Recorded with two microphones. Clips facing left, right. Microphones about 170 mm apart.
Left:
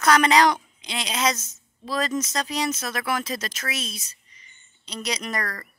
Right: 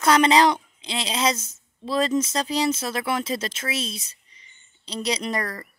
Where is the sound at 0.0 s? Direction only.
25° right (ahead or behind).